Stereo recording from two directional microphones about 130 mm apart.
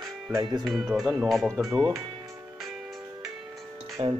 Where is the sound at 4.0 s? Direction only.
45° right (ahead or behind).